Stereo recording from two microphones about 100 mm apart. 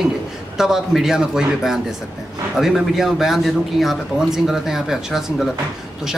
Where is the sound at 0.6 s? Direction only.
5° right (ahead or behind).